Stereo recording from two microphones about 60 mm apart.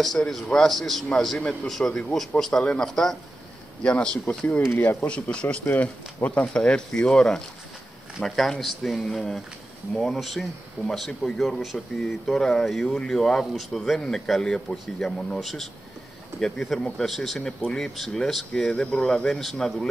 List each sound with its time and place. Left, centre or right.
0.0 s speech: centre
5.7 s speech: left
6.4 s speech: centre